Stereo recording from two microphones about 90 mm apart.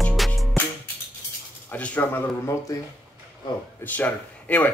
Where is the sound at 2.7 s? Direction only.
40° left (ahead or behind).